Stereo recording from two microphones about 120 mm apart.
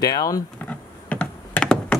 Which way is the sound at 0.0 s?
30° left (ahead or behind).